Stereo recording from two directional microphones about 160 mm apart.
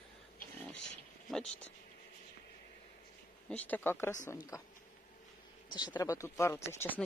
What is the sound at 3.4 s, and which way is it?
Speech, 10° left (ahead or behind).